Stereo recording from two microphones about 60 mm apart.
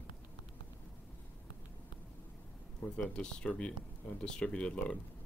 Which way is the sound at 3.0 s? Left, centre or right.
Centre.